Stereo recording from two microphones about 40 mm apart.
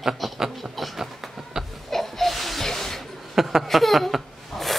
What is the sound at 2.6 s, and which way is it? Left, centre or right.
Snake, centre.